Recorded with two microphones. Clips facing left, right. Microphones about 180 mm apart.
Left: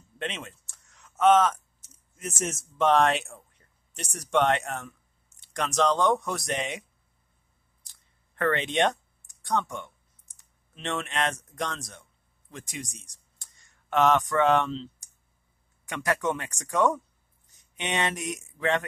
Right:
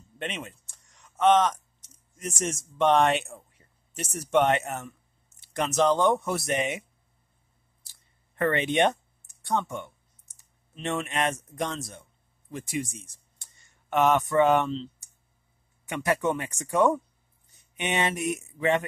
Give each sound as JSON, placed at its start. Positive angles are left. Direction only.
{"t": 0.2, "sound": "speech", "side_deg": 0}
{"t": 7.8, "sound": "a sound", "side_deg": -5}
{"t": 9.4, "sound": "speech", "side_deg": 0}
{"t": 15.9, "sound": "speech", "side_deg": -5}